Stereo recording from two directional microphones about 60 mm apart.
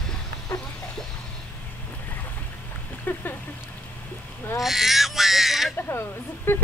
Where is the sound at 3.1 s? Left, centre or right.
Left.